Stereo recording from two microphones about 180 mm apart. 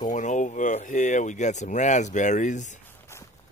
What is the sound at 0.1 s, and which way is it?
Speech, 45° left (ahead or behind).